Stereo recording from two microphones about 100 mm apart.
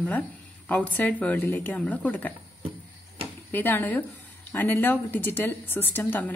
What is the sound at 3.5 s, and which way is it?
A woman's voice, 20° left (ahead or behind).